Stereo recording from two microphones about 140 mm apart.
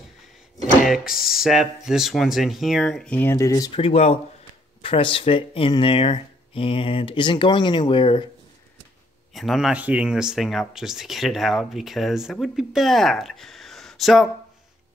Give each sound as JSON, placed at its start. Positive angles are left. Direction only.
{"t": 0.8, "sound": "speech", "side_deg": -5}
{"t": 3.7, "sound": "speech", "side_deg": 45}
{"t": 9.3, "sound": "speech", "side_deg": 0}